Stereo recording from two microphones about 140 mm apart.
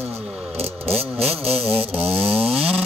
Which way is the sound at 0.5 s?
45° right (ahead or behind).